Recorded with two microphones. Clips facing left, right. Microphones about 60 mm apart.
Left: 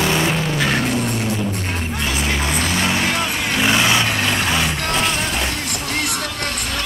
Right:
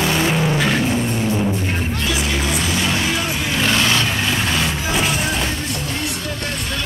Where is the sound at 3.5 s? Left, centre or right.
Centre.